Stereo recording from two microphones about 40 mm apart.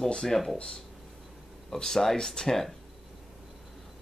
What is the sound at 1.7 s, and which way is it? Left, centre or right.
Speech, centre.